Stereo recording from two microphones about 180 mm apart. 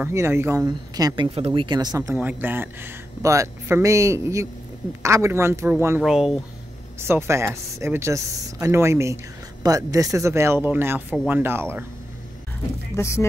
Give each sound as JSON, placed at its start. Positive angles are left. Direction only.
{"t": 0.0, "sound": "speech", "side_deg": -15}
{"t": 7.0, "sound": "speech", "side_deg": -15}
{"t": 12.9, "sound": "speech", "side_deg": 15}